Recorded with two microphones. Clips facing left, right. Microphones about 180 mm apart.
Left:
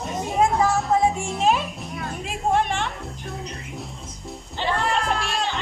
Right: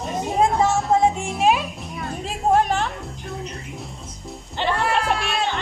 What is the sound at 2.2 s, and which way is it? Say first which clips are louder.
Music: right 4 dB; 40° right (ahead or behind).